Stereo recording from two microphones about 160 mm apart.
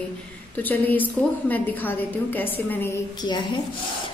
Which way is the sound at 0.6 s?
10° left (ahead or behind).